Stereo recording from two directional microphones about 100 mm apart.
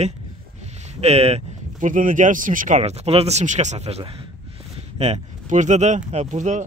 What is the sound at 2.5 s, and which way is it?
Speech, 90° right.